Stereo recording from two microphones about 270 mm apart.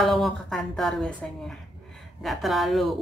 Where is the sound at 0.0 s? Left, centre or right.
Centre.